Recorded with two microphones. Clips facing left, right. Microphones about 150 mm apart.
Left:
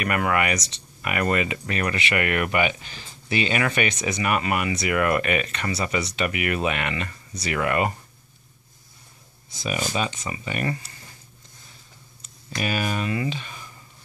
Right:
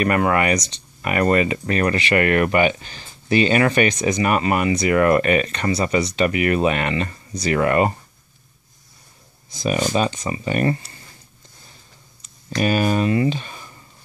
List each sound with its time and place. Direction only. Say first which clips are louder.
0.0 s speech: right 5 dB; 35° right (ahead or behind)
9.9 s speech: right 6 dB; 40° right (ahead or behind)
12.4 s speech: right 7 dB; 35° right (ahead or behind)